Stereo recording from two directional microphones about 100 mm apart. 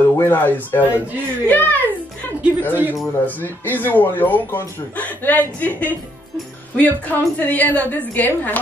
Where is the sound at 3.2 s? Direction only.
20° left (ahead or behind).